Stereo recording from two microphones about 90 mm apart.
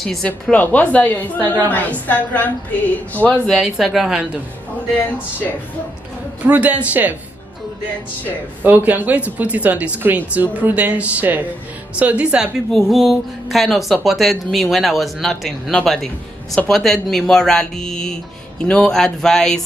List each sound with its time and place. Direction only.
0.0 s speech: 5° left (ahead or behind)
0.3 s a woman's voice: 20° left (ahead or behind)
3.4 s speech: 5° right (ahead or behind)
6.4 s speech: 15° right (ahead or behind)
8.6 s speech: 20° right (ahead or behind)
12.7 s a woman's voice: centre (ahead or behind)